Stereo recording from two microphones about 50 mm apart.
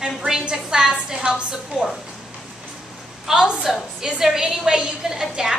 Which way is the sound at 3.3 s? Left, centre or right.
Centre.